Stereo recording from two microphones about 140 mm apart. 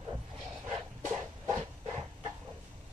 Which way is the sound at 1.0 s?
15° right (ahead or behind).